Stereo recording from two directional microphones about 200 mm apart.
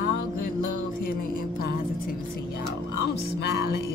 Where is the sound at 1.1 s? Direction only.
45° left (ahead or behind).